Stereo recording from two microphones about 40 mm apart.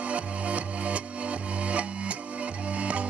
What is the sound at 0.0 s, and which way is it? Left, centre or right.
Music, right.